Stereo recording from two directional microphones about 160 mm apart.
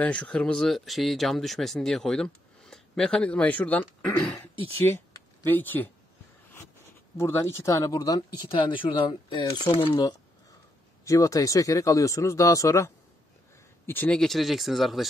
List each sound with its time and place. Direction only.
0.0 s speech: 10° left (ahead or behind)
7.2 s speech: 15° left (ahead or behind); by 15.0 s centre (ahead or behind)